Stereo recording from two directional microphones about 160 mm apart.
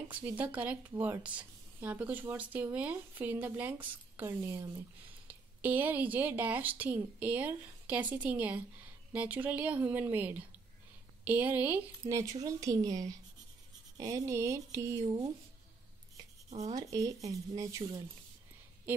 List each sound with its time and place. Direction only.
0.1 s speech: 10° right (ahead or behind)
16.4 s writing: 45° right (ahead or behind)
16.7 s speech: 20° right (ahead or behind)